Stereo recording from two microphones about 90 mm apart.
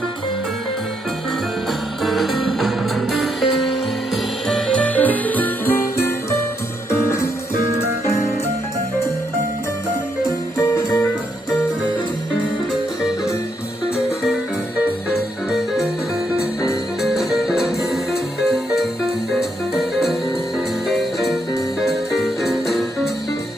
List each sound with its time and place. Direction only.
2.0 s music: centre (ahead or behind); by 7.2 s 30° left (ahead or behind)
10.7 s music: 30° left (ahead or behind)
15.5 s music: 5° right (ahead or behind)
17.0 s music: 5° right (ahead or behind)